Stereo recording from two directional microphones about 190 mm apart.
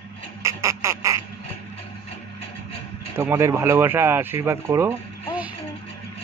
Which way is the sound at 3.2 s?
15° right (ahead or behind).